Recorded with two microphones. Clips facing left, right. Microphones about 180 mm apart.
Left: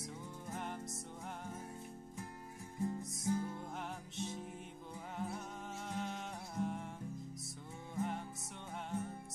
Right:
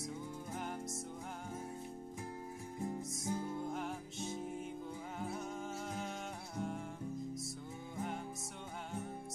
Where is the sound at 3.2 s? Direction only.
20° right (ahead or behind).